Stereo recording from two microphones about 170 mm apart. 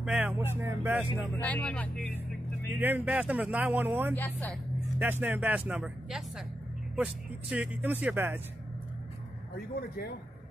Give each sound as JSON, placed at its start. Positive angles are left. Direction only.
{"t": 0.0, "sound": "speech", "side_deg": -5}
{"t": 1.4, "sound": "speech", "side_deg": 10}
{"t": 2.8, "sound": "speech", "side_deg": -10}
{"t": 4.1, "sound": "speech", "side_deg": 10}
{"t": 4.9, "sound": "speech", "side_deg": -10}
{"t": 9.8, "sound": "a man's voice", "side_deg": 65}